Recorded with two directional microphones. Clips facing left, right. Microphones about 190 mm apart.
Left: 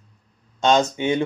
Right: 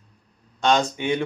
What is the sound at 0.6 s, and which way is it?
Speech, 20° left (ahead or behind).